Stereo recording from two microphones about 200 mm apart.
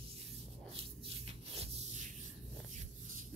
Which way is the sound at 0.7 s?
30° right (ahead or behind).